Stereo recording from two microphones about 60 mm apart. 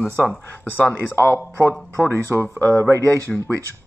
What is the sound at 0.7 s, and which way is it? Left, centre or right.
Speech, left.